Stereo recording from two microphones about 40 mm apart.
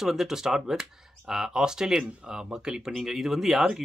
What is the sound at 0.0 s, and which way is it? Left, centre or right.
Speech, centre.